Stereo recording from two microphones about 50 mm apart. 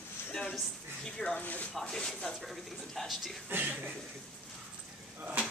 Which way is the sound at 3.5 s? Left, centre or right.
Right.